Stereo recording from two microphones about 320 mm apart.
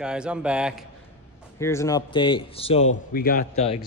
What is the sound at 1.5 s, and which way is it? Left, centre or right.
A man's voice, centre.